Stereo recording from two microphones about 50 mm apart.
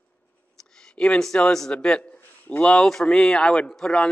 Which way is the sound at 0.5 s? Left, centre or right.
Centre.